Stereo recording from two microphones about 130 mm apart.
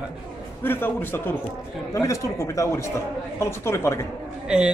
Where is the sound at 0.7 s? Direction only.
15° left (ahead or behind).